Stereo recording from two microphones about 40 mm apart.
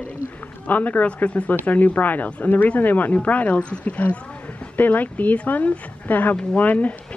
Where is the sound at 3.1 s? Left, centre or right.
Left.